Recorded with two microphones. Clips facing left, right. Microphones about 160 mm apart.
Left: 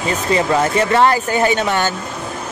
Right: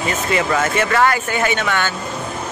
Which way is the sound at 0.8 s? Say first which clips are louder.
Left 3 dB; 25° left (ahead or behind).